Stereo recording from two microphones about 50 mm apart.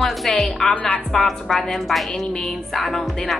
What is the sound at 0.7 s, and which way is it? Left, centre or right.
Music, left.